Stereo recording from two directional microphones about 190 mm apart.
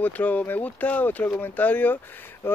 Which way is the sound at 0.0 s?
10° left (ahead or behind).